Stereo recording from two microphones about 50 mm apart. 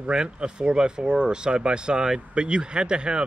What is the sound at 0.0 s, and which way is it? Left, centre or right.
Speech, centre.